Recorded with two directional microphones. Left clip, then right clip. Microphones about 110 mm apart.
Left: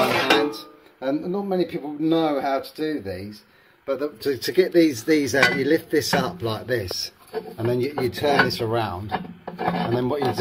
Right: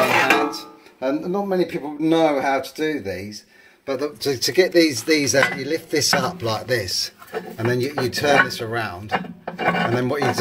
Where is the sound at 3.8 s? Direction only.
20° left (ahead or behind).